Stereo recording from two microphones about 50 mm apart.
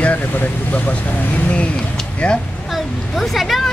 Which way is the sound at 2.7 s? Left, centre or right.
Centre.